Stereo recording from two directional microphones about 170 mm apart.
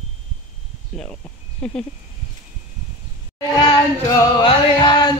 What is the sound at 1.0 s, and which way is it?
Speech, 5° left (ahead or behind).